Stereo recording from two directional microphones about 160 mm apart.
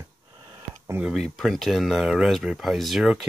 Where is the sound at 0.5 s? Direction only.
15° right (ahead or behind).